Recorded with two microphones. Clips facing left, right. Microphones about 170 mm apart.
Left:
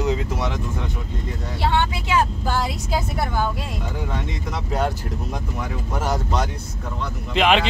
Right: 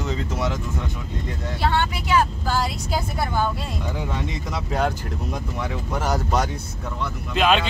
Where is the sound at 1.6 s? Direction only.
25° left (ahead or behind).